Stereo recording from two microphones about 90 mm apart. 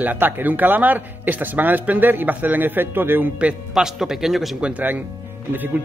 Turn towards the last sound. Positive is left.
turn(degrees=-20)  # may be behind; listen again after turning